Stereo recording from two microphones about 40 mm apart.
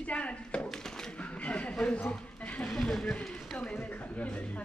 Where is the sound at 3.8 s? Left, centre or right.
Left.